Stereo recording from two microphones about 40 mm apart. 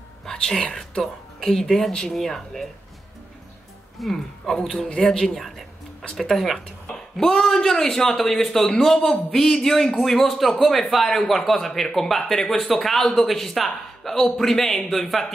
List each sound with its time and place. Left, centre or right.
0.2 s whispering: centre
1.4 s a man's voice: centre
4.0 s speech: centre
4.7 s a man's voice: left
5.0 s a man's voice: centre